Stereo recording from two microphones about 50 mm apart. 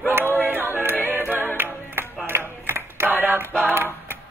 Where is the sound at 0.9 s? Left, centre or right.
Right.